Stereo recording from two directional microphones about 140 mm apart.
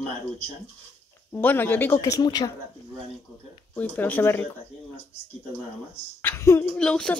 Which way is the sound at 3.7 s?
10° left (ahead or behind).